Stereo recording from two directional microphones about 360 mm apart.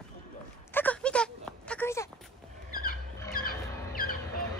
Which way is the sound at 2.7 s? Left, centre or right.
Left.